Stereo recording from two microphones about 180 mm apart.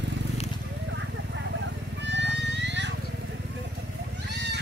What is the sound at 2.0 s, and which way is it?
Wild animals, 80° right.